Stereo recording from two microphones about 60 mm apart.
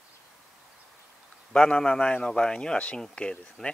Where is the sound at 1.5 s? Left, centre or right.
Centre.